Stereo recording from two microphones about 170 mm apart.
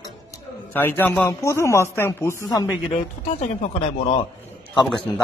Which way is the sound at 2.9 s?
40° left (ahead or behind).